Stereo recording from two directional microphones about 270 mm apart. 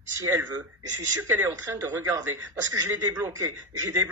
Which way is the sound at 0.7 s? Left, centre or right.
Right.